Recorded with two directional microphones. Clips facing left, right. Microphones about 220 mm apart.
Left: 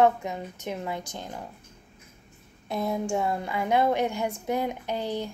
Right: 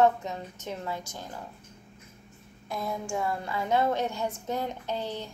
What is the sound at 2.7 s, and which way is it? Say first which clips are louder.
A woman's voice: left 5 dB; 25° left (ahead or behind).